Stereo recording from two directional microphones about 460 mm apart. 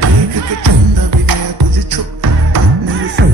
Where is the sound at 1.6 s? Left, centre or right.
Right.